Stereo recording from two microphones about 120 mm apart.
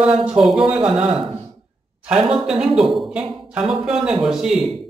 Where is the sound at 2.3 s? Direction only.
5° right (ahead or behind).